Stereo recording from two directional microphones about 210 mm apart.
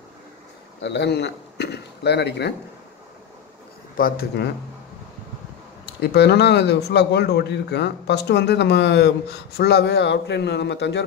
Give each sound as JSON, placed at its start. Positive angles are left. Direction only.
{"t": 0.7, "sound": "speech", "side_deg": 55}
{"t": 3.9, "sound": "a man's voice", "side_deg": 45}
{"t": 5.9, "sound": "a man's voice", "side_deg": 55}